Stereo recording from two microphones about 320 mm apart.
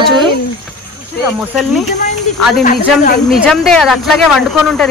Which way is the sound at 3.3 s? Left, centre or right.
Centre.